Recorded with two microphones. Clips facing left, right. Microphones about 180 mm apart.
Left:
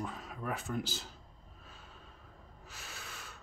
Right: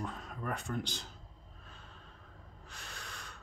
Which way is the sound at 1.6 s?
5° left (ahead or behind).